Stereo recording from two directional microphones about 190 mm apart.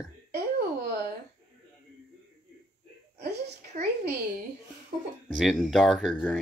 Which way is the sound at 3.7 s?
45° right (ahead or behind).